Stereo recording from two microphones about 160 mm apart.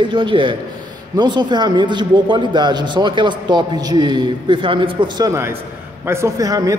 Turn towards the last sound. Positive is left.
turn(degrees=-20)  # may be behind; listen again after turning